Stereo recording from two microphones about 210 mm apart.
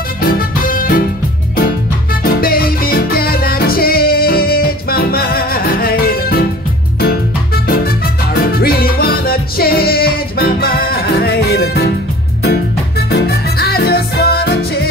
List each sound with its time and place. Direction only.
0.7 s music: 40° left (ahead or behind)
2.2 s music: 45° left (ahead or behind)